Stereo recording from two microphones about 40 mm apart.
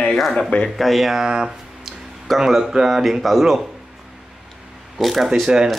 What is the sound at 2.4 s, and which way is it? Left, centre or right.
Speech, centre.